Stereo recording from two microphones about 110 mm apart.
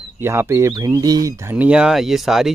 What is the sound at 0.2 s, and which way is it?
Speech, 25° right (ahead or behind).